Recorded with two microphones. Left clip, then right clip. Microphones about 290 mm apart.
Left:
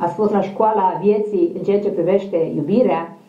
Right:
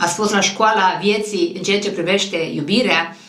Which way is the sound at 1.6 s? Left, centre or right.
Right.